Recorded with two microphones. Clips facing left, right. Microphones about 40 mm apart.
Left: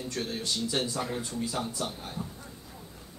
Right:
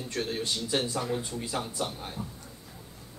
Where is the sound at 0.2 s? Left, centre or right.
Centre.